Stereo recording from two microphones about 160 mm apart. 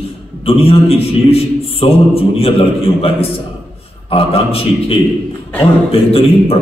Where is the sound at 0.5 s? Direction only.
35° left (ahead or behind).